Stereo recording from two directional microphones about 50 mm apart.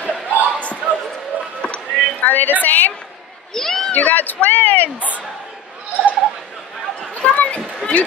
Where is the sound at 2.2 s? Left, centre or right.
Left.